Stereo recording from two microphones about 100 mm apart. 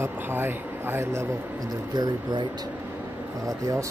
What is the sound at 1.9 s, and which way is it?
Speech, 45° right (ahead or behind).